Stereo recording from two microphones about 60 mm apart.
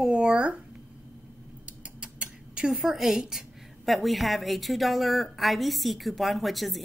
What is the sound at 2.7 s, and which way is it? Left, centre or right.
A woman's voice, centre.